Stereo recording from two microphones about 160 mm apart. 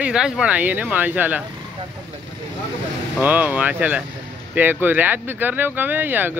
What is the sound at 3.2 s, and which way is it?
Speech, 10° right (ahead or behind).